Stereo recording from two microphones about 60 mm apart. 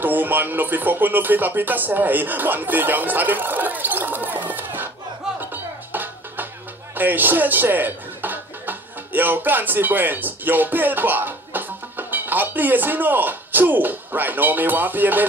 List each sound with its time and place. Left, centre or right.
0.0 s speech: right
5.4 s music: right
7.0 s speech: right